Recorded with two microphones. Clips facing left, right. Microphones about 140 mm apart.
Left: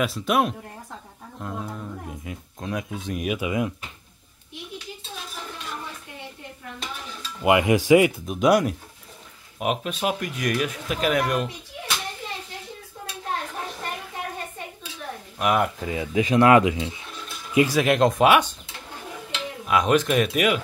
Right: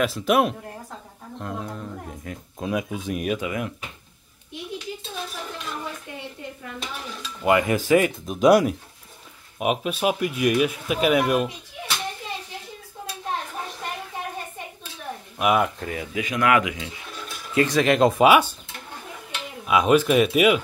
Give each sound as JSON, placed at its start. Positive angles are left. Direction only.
{"t": 0.0, "sound": "speech", "side_deg": 0}
{"t": 2.6, "sound": "speech", "side_deg": -10}
{"t": 3.3, "sound": "speech", "side_deg": 15}
{"t": 7.4, "sound": "speech", "side_deg": 15}
{"t": 8.3, "sound": "speech", "side_deg": 0}
{"t": 15.3, "sound": "speech", "side_deg": -5}
{"t": 15.8, "sound": "speech", "side_deg": 20}
{"t": 17.6, "sound": "speech", "side_deg": 5}
{"t": 19.6, "sound": "speech", "side_deg": -5}